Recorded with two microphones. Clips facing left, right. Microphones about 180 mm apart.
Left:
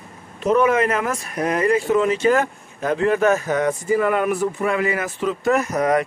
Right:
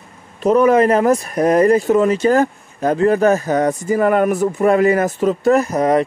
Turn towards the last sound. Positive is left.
turn(degrees=-30)  # may be behind; listen again after turning